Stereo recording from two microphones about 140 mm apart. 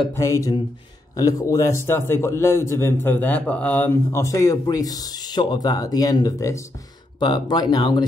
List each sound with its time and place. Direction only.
0.1 s a man's voice: 20° left (ahead or behind)